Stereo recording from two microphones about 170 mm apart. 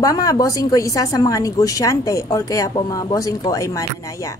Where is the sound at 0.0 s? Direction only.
20° left (ahead or behind).